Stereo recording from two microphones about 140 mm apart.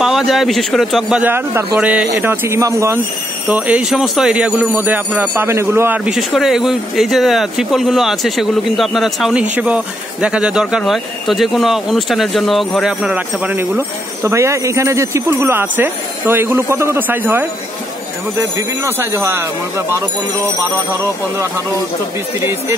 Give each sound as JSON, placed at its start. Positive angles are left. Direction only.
{"t": 0.0, "sound": "speech", "side_deg": 0}
{"t": 1.3, "sound": "speech", "side_deg": -20}
{"t": 3.4, "sound": "speech", "side_deg": -10}
{"t": 6.1, "sound": "speech", "side_deg": 0}
{"t": 18.9, "sound": "speech", "side_deg": -15}
{"t": 22.4, "sound": "speech", "side_deg": -15}